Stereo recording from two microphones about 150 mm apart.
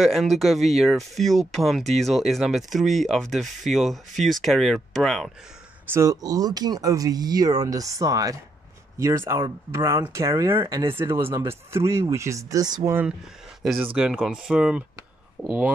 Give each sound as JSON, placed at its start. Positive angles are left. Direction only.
{"t": 0.0, "sound": "speech", "side_deg": 0}
{"t": 5.9, "sound": "speech", "side_deg": -25}
{"t": 9.7, "sound": "speech", "side_deg": -20}
{"t": 10.6, "sound": "speech", "side_deg": -35}
{"t": 11.0, "sound": "speech", "side_deg": -15}
{"t": 13.9, "sound": "speech", "side_deg": -5}